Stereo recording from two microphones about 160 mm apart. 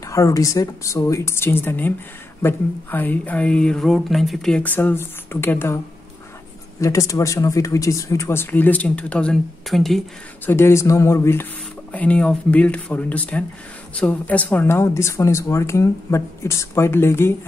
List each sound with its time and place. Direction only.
0.0 s speech: 20° left (ahead or behind)
6.8 s speech: 20° left (ahead or behind); by 10.0 s centre (ahead or behind)
10.4 s speech: 15° left (ahead or behind)